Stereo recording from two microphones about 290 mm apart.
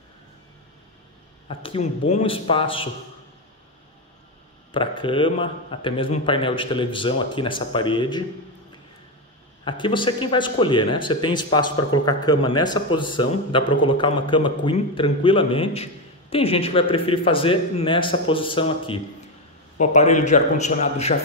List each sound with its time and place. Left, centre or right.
1.5 s a man's voice: centre
4.7 s a man's voice: centre
9.7 s a man's voice: centre